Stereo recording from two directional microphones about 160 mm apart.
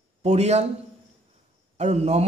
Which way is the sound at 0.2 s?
45° right (ahead or behind).